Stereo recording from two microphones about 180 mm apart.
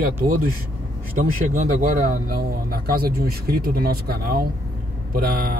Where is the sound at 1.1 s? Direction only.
45° right (ahead or behind).